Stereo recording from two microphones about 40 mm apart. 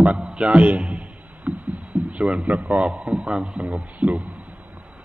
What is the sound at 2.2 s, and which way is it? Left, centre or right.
A man's voice, right.